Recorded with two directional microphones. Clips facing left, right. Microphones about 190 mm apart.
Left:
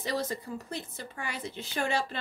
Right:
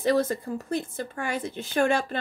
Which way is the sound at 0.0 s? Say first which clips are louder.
Right 9 dB; 50° right (ahead or behind).